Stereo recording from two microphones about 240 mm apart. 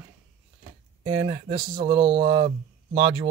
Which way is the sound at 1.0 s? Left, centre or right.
Right.